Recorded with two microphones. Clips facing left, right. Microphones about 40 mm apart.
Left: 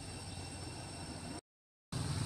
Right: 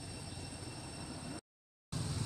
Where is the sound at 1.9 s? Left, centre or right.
Centre.